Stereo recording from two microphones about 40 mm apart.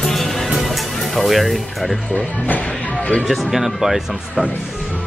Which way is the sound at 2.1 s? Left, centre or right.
Left.